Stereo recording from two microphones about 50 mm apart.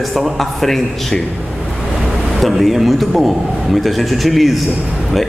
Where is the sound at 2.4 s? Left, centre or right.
Centre.